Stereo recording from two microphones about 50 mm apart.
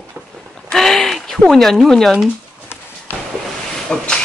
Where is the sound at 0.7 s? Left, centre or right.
Centre.